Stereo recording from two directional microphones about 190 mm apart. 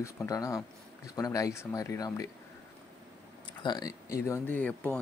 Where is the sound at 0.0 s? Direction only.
15° left (ahead or behind).